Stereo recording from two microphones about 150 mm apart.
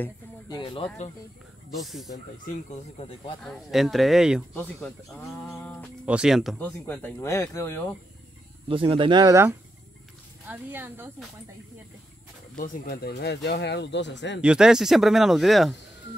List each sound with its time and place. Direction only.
0.5 s speech: 35° left (ahead or behind)
1.8 s speech: centre (ahead or behind)
3.4 s speech: centre (ahead or behind)
4.6 s speech: 5° left (ahead or behind)
6.0 s speech: 5° right (ahead or behind)
6.6 s speech: 10° left (ahead or behind)
8.6 s speech: 40° right (ahead or behind); by 11.1 s 15° right (ahead or behind)
12.5 s speech: 80° left
14.4 s speech: 5° right (ahead or behind)